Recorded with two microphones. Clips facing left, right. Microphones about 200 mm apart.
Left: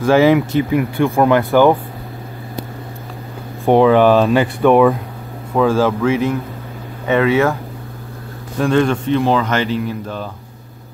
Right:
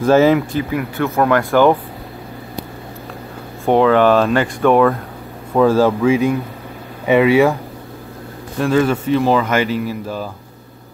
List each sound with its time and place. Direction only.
0.0 s speech: 15° left (ahead or behind)
3.6 s speech: 15° left (ahead or behind)
5.5 s speech: 5° right (ahead or behind)
8.5 s speech: 5° right (ahead or behind)